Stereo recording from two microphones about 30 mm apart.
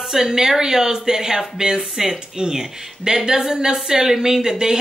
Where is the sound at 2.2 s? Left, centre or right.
Right.